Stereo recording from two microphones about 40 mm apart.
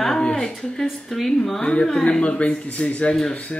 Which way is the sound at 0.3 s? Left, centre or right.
Centre.